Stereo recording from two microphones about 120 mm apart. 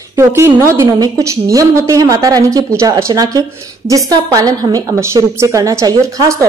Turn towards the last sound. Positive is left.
turn(degrees=-25)  # may be behind; listen again after turning